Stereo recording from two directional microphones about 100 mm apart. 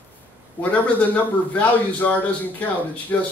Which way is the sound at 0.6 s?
15° left (ahead or behind).